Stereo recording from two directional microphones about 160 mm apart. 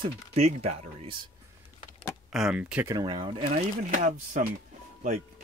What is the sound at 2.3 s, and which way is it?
Speech, 5° right (ahead or behind).